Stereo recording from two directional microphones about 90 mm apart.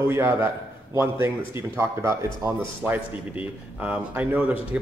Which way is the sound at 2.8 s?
20° right (ahead or behind).